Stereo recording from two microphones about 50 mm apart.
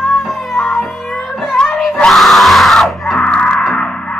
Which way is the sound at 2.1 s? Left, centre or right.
Centre.